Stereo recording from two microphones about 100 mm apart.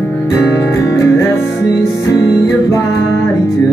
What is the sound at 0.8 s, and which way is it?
Music, 30° left (ahead or behind).